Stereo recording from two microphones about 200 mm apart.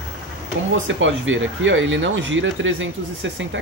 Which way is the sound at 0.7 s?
70° right (ahead or behind).